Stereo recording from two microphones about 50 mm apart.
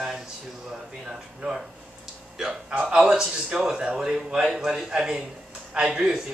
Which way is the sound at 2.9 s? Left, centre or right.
Centre.